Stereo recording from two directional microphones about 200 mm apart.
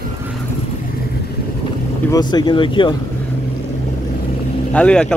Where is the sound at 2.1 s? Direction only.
20° left (ahead or behind).